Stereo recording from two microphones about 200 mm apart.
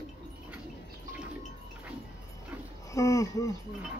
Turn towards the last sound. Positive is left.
turn(degrees=15)  # may be behind; listen again after turning